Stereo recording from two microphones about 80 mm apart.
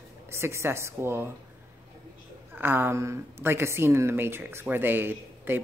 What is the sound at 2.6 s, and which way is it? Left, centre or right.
Speech, right.